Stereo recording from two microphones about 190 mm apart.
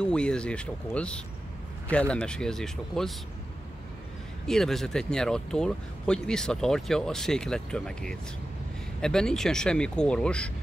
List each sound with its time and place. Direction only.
0.0 s speech: 5° left (ahead or behind)
4.5 s speech: centre (ahead or behind)